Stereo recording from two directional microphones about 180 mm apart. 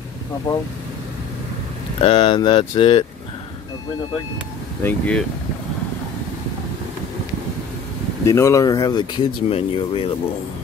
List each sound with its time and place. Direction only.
2.0 s speech: 30° left (ahead or behind)
4.8 s speech: 5° left (ahead or behind)
8.3 s speech: 15° left (ahead or behind)